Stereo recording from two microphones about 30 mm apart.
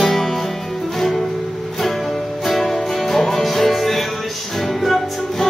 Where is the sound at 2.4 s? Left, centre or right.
Centre.